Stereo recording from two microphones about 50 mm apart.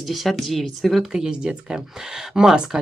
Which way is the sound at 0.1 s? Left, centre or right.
Centre.